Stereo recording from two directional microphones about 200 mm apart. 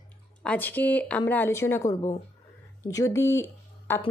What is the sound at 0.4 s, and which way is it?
A woman's voice, 5° left (ahead or behind).